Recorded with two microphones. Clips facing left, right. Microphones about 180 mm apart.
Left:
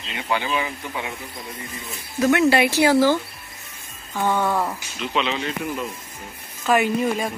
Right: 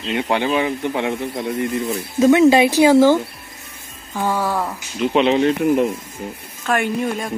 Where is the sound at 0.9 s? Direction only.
75° right (ahead or behind).